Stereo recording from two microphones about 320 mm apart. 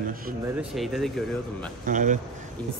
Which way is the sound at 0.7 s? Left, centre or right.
Centre.